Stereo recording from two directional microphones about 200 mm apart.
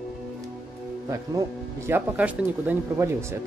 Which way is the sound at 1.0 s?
15° right (ahead or behind).